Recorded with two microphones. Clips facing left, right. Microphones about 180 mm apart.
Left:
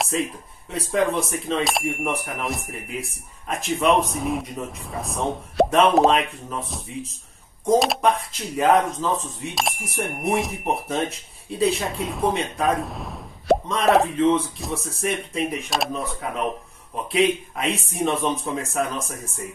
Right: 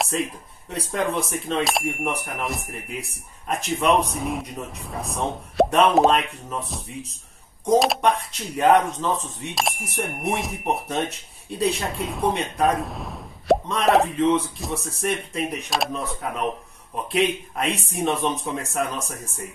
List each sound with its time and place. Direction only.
0.0 s speech: centre (ahead or behind)